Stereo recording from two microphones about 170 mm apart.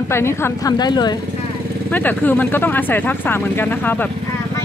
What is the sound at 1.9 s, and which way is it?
Speech, 10° left (ahead or behind).